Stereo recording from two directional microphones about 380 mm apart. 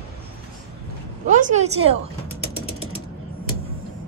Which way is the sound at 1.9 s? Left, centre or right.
Centre.